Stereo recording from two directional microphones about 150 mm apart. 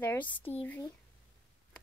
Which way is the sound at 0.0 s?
10° left (ahead or behind).